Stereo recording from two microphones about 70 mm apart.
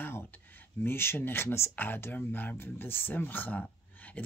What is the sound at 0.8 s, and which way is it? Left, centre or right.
Speech, left.